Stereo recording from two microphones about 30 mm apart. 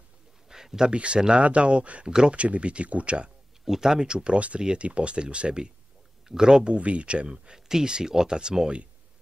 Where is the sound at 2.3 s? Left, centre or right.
Right.